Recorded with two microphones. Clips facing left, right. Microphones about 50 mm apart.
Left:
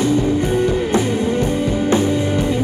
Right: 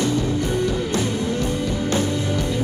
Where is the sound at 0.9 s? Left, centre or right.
Left.